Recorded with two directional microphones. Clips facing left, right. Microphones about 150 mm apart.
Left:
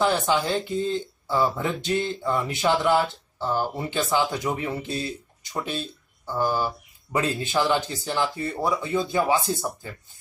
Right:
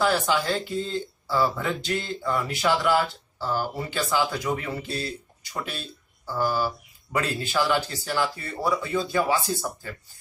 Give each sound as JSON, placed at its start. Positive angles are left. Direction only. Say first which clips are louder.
{"t": 0.0, "sound": "speech", "louder": "left 1 dB", "side_deg": 20}